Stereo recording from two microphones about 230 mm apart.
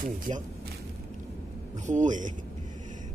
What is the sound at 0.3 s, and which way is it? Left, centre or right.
Speech, right.